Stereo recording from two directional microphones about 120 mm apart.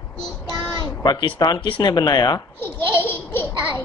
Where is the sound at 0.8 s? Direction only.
40° left (ahead or behind).